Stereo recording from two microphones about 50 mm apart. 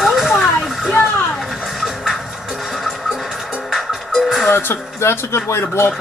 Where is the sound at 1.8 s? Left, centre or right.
Centre.